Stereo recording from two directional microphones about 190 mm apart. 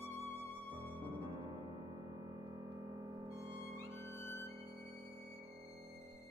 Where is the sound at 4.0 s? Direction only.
10° left (ahead or behind).